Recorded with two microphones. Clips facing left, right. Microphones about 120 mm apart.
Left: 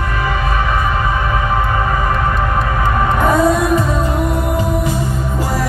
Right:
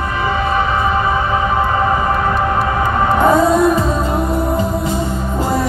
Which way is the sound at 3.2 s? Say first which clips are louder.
Right 3 dB; 25° right (ahead or behind).